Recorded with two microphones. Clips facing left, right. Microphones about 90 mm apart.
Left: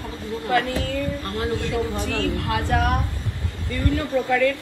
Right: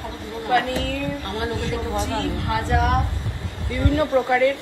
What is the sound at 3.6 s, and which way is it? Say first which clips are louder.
Speech: right 3 dB; 25° right (ahead or behind).